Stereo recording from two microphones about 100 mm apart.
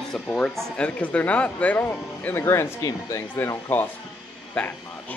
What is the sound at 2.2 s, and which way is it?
Speech, 25° left (ahead or behind).